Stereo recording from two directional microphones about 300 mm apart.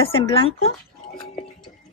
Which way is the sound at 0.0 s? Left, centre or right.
Centre.